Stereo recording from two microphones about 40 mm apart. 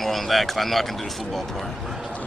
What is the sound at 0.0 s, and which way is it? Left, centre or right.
Speech, centre.